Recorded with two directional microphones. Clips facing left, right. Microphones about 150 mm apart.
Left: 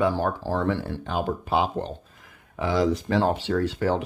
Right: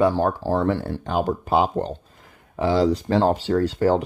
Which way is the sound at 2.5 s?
30° right (ahead or behind).